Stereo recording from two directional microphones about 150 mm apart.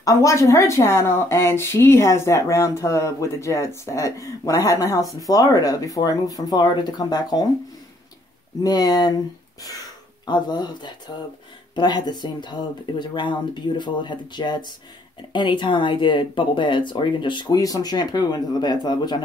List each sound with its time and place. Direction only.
0.0 s speech: 20° left (ahead or behind)
8.6 s speech: 25° left (ahead or behind)
10.2 s speech: 30° left (ahead or behind)